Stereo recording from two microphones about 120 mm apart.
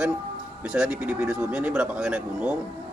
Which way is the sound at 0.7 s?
10° right (ahead or behind).